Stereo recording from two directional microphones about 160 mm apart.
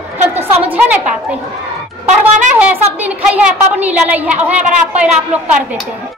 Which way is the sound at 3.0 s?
10° right (ahead or behind).